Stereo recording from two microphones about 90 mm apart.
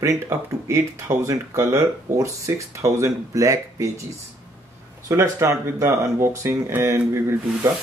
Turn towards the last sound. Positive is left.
turn(degrees=-30)  # may be behind; listen again after turning